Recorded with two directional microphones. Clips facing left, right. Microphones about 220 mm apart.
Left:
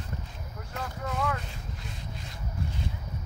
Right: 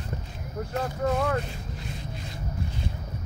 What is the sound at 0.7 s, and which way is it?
Speech, 45° right (ahead or behind).